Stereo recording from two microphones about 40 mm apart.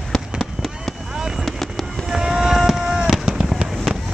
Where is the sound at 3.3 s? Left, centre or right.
Centre.